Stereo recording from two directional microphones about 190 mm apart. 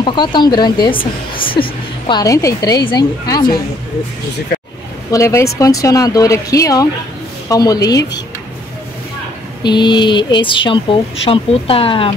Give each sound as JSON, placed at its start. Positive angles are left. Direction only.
{"t": 0.0, "sound": "speech", "side_deg": 25}
{"t": 5.1, "sound": "speech", "side_deg": 15}
{"t": 9.6, "sound": "speech", "side_deg": 25}